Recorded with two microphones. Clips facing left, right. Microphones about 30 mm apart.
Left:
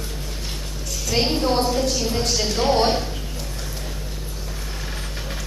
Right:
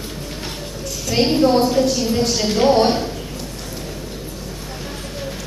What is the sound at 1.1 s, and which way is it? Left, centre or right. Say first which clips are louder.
A woman's voice: right 5 dB; centre.